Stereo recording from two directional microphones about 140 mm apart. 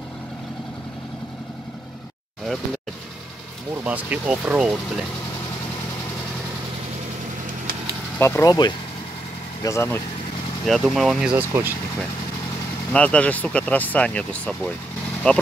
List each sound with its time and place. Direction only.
3.8 s speech: 10° right (ahead or behind)
8.2 s speech: 20° left (ahead or behind)
9.6 s speech: 20° left (ahead or behind)
10.6 s speech: centre (ahead or behind)
12.9 s speech: 10° left (ahead or behind)